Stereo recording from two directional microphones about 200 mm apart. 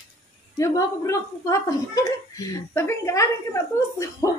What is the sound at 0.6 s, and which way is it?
Speech, 15° left (ahead or behind).